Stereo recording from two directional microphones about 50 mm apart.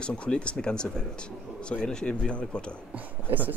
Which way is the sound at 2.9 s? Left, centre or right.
Right.